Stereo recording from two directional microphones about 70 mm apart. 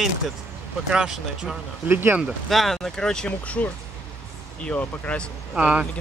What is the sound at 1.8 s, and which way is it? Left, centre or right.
Speech, right.